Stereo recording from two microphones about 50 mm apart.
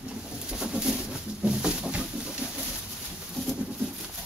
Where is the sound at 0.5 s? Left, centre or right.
Centre.